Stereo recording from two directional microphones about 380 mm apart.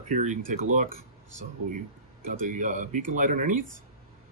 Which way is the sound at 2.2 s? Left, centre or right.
Centre.